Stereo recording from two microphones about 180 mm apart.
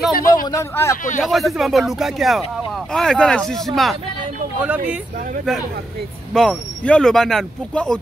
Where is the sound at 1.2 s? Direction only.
Centre (ahead or behind).